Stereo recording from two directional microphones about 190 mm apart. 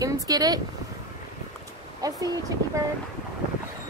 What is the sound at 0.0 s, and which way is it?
Speech, 20° right (ahead or behind).